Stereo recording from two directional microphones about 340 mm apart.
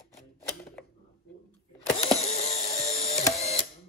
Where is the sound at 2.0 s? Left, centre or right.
Centre.